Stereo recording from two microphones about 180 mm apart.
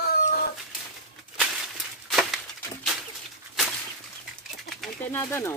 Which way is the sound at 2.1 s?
Centre (ahead or behind).